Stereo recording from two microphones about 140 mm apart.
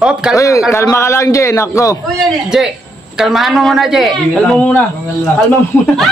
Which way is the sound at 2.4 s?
5° right (ahead or behind).